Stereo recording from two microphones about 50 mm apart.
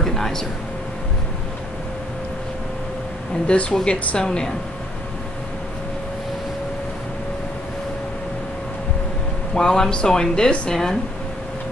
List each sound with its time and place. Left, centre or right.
0.0 s speech: centre
3.4 s speech: left
9.6 s speech: centre